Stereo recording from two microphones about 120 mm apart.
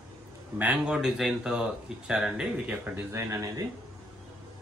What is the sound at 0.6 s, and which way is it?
Speech, 10° right (ahead or behind).